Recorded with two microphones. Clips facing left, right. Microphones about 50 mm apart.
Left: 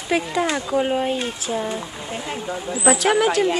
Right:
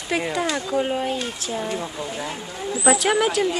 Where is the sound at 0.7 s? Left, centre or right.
Centre.